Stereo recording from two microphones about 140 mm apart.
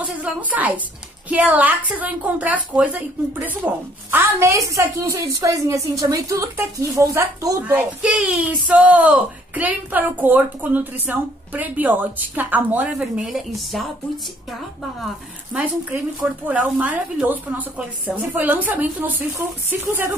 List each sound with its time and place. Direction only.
0.5 s a woman's voice: 10° right (ahead or behind)
7.7 s a woman's voice: 10° right (ahead or behind)
15.5 s a woman's voice: 10° right (ahead or behind)